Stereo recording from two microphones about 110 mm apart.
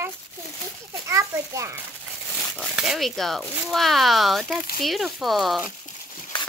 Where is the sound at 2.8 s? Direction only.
Centre (ahead or behind).